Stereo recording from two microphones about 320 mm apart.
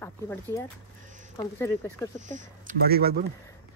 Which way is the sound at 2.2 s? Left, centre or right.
Right.